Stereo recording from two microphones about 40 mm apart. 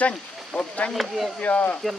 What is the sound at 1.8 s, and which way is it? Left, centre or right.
Speech, centre.